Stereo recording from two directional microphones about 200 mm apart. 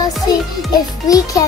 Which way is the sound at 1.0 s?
20° left (ahead or behind).